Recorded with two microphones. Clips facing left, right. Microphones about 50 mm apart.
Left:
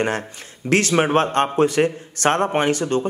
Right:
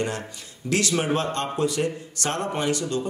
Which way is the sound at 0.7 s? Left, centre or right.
Left.